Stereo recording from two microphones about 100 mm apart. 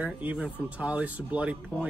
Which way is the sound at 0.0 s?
15° right (ahead or behind).